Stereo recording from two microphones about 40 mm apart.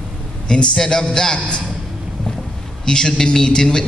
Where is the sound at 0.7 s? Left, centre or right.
Centre.